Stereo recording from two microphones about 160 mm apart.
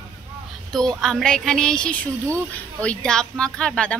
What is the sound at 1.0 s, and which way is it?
Speech, 5° left (ahead or behind).